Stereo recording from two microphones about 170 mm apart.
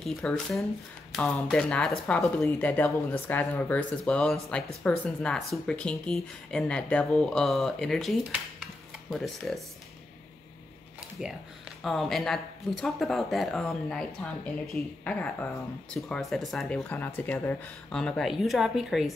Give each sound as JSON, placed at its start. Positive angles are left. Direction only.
{"t": 0.0, "sound": "a woman's voice", "side_deg": 5}
{"t": 11.0, "sound": "a sound", "side_deg": -5}
{"t": 11.8, "sound": "a woman's voice", "side_deg": 0}